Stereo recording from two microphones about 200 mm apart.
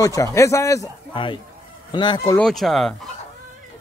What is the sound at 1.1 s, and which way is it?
Speech, 25° left (ahead or behind).